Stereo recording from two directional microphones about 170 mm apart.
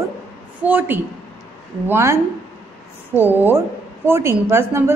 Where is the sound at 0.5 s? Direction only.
10° right (ahead or behind).